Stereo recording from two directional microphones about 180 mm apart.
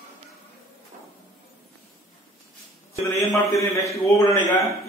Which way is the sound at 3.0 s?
15° left (ahead or behind).